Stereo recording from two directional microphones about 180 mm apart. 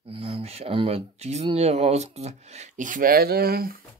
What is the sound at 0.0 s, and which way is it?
Speech, 30° right (ahead or behind).